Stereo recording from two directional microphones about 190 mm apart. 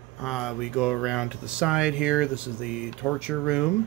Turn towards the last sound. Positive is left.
turn(degrees=-5)  # may be behind; listen again after turning